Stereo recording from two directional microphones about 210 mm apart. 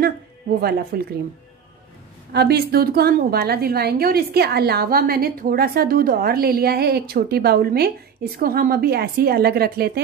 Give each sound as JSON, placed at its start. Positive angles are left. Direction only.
{"t": 0.6, "sound": "a woman's voice", "side_deg": -45}
{"t": 2.3, "sound": "a woman's voice", "side_deg": -50}